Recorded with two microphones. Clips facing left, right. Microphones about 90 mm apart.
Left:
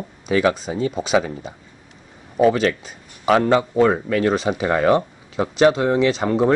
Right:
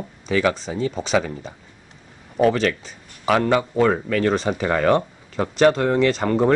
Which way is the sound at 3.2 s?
25° left (ahead or behind).